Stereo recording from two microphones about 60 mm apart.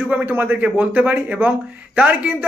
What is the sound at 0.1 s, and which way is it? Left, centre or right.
A man's voice, right.